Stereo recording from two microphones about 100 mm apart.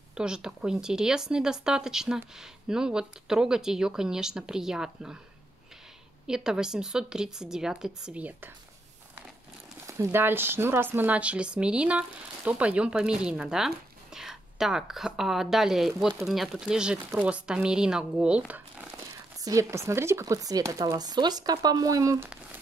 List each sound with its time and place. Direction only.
0.1 s speech: 5° right (ahead or behind)
6.2 s speech: 5° right (ahead or behind)
9.8 s speech: 30° right (ahead or behind); by 18.9 s 15° right (ahead or behind)
19.4 s speech: 30° right (ahead or behind)